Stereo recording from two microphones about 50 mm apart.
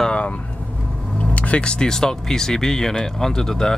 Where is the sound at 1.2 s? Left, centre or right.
Left.